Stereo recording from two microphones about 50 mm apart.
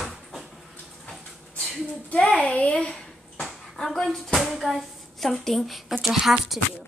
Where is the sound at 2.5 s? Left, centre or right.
Left; by 5.9 s centre.